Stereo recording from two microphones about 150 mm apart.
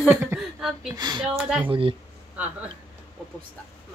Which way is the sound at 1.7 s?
35° right (ahead or behind).